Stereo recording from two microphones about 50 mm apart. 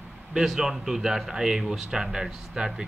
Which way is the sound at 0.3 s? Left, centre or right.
Centre.